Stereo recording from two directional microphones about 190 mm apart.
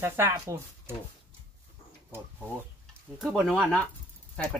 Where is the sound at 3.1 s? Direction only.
Centre (ahead or behind).